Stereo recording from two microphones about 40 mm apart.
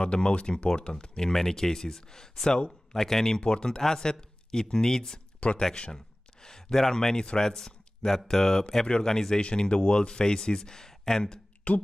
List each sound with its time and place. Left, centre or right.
0.0 s speech: left
5.4 s speech: left
5.9 s speech: centre
11.7 s speech: left